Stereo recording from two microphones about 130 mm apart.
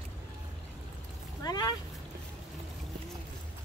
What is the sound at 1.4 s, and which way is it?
Speech, 30° left (ahead or behind).